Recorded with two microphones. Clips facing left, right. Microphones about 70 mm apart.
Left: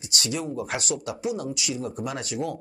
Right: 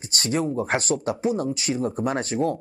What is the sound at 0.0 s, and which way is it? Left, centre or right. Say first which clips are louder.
Speech: right 5 dB; right.